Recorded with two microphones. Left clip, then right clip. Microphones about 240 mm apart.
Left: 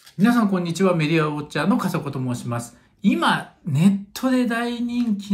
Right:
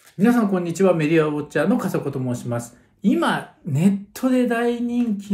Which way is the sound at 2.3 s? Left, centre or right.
Left.